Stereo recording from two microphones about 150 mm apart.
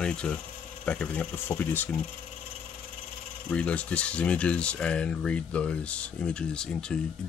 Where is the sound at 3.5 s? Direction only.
10° left (ahead or behind).